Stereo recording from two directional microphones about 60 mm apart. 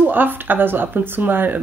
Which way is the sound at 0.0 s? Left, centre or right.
Right.